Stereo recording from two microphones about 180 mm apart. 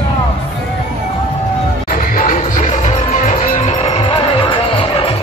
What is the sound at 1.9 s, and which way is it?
Music, 50° left (ahead or behind).